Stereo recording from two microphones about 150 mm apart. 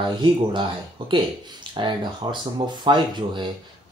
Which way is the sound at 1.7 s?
30° right (ahead or behind).